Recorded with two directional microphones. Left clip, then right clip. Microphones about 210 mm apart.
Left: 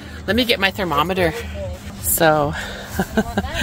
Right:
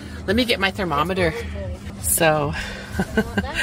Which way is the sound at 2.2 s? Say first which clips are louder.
Left 3 dB; 30° left (ahead or behind).